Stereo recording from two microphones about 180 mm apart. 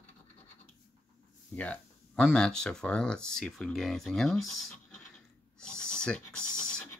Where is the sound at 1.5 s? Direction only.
5° left (ahead or behind).